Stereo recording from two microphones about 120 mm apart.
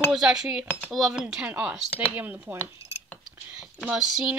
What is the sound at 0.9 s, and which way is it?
A woman's voice, 5° right (ahead or behind).